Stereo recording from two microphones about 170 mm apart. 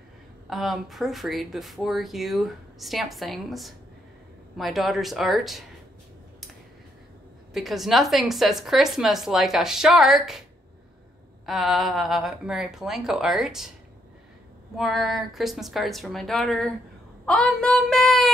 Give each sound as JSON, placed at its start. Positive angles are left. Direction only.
{"t": 0.5, "sound": "speech", "side_deg": 0}
{"t": 7.5, "sound": "speech", "side_deg": 0}
{"t": 11.4, "sound": "speech", "side_deg": 0}
{"t": 14.8, "sound": "speech", "side_deg": 0}